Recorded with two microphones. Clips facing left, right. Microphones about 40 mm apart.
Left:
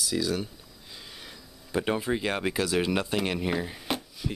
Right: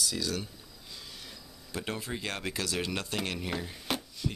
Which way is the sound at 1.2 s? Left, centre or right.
Centre.